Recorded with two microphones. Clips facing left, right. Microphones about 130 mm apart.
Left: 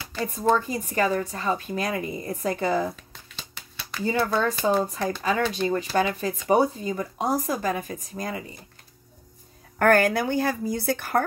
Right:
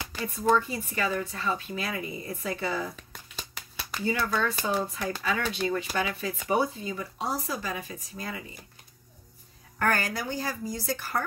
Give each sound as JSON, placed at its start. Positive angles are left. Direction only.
{"t": 0.2, "sound": "a woman's voice", "side_deg": 35}
{"t": 4.4, "sound": "speech", "side_deg": 40}
{"t": 9.8, "sound": "speech", "side_deg": 55}